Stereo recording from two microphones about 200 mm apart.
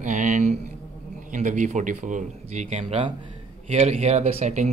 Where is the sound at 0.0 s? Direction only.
35° right (ahead or behind).